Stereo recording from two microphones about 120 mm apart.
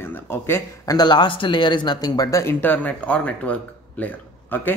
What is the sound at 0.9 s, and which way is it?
Speech, 35° left (ahead or behind).